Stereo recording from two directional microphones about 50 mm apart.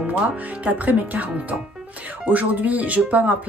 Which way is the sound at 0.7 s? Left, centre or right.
Right.